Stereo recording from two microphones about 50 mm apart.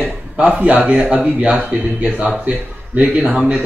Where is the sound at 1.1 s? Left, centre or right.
Right.